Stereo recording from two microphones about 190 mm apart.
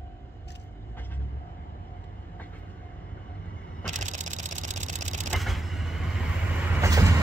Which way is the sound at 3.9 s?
40° right (ahead or behind).